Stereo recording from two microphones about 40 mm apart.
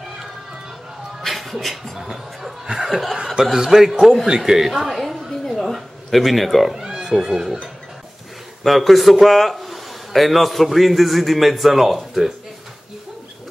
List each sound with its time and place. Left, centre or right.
1.2 s music: centre
2.0 s speech: centre
4.8 s a sound: centre
6.7 s cat: centre
7.1 s speech: centre
8.6 s a man's voice: centre